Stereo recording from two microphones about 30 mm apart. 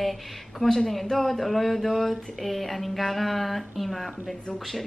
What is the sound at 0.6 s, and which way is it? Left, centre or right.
Speech, centre.